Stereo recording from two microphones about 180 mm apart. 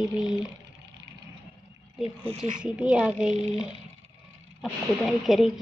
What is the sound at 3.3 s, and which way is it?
Speech, 35° right (ahead or behind).